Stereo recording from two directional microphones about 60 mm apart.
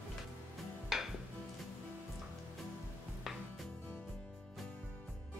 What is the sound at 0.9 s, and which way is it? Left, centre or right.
Dishes, centre.